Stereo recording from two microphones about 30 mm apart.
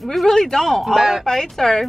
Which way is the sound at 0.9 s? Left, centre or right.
Centre.